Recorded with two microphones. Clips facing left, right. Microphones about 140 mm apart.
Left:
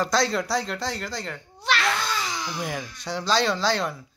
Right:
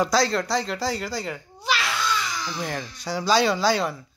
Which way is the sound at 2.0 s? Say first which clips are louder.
Right 2 dB; 45° left (ahead or behind).